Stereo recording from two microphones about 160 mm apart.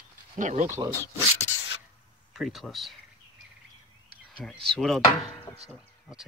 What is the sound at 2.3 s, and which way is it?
Speech, centre (ahead or behind).